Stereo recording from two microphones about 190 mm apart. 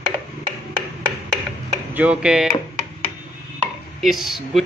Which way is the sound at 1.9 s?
5° right (ahead or behind).